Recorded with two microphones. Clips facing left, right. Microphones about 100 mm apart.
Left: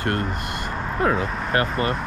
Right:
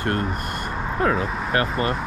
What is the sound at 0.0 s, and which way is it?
Speech, 35° right (ahead or behind).